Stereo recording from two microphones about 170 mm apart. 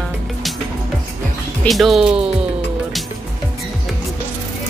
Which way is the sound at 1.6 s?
Centre (ahead or behind).